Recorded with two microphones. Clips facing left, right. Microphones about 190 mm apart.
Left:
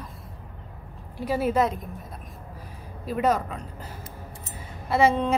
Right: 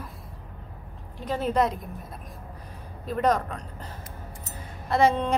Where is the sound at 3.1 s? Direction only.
5° left (ahead or behind).